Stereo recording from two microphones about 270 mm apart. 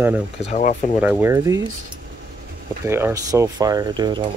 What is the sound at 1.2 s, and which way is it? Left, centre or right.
Speech, centre.